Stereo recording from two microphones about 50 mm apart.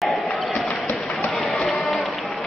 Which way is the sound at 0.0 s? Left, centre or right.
Centre.